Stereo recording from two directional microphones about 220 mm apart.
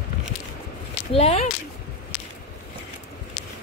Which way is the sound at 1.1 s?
30° left (ahead or behind).